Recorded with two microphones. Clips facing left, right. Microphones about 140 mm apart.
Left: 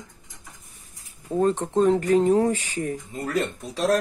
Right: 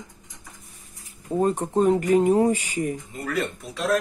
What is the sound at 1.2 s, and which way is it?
Speech, 10° right (ahead or behind).